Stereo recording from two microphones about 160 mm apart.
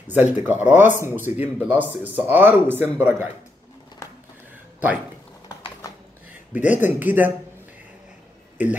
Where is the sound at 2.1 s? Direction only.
10° right (ahead or behind).